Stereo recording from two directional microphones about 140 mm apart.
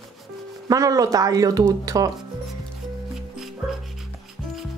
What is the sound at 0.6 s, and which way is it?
Speech, 25° right (ahead or behind).